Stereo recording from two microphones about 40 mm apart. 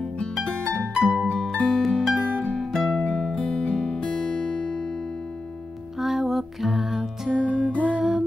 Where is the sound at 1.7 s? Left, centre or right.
Centre.